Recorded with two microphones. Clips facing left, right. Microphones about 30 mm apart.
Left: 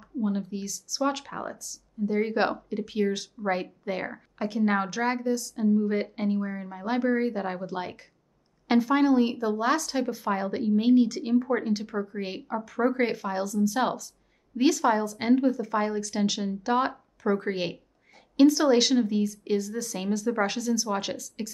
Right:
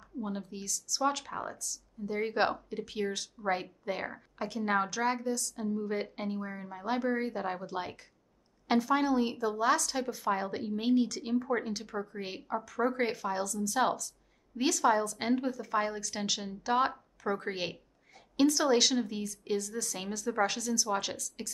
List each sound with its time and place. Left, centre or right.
0.0 s a woman's voice: centre